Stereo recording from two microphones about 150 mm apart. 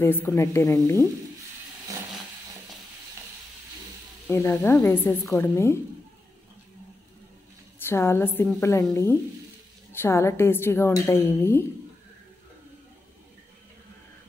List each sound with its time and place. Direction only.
0.0 s a woman's voice: 15° left (ahead or behind)
1.9 s vehicle: 25° right (ahead or behind)
4.3 s a woman's voice: 15° left (ahead or behind)
7.8 s a woman's voice: 15° left (ahead or behind)